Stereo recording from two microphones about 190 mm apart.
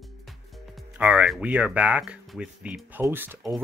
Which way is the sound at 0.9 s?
5° right (ahead or behind).